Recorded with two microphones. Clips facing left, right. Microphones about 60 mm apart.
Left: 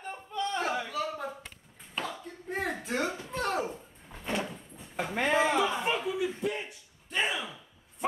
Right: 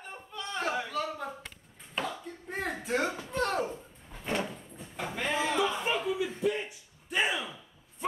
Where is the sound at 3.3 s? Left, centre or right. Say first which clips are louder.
Right 2 dB; centre.